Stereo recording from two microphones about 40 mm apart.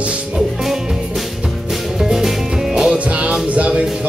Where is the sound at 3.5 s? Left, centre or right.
Right.